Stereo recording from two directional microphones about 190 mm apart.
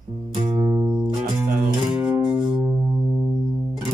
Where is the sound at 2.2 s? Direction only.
25° right (ahead or behind).